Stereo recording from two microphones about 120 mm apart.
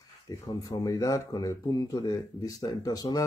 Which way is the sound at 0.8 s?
30° left (ahead or behind).